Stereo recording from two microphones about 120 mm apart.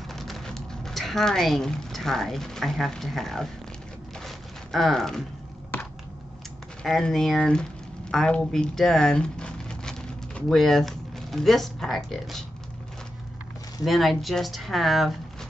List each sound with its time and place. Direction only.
0.1 s speech: centre (ahead or behind)
4.2 s a sound: centre (ahead or behind)
5.7 s computer keyboard: 15° left (ahead or behind)
6.8 s speech: 5° left (ahead or behind)
13.8 s speech: centre (ahead or behind)